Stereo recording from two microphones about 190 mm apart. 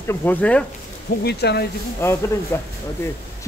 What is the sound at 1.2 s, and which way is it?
Speech, 60° left (ahead or behind).